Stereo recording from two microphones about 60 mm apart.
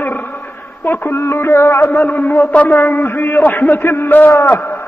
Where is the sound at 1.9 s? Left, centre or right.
Left.